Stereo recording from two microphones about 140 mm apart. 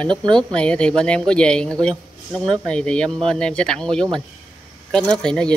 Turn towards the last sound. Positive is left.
turn(degrees=5)  # may be behind; listen again after turning